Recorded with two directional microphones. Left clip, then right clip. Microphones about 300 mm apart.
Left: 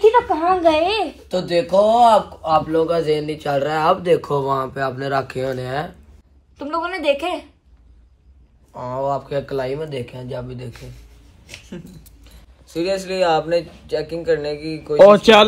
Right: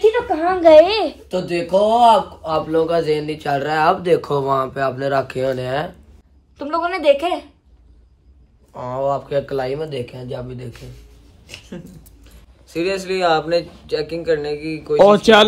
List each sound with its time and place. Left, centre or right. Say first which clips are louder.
0.0 s a sound: left 2 dB; centre
0.6 s a woman's voice: right 6 dB; centre
1.5 s a man's voice: left 1 dB; centre
8.7 s a man's voice: right 2 dB; centre